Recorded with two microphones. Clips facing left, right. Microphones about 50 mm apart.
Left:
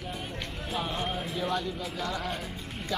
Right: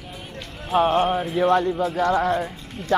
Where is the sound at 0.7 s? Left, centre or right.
Right.